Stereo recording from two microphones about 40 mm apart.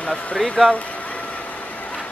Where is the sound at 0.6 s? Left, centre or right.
Centre.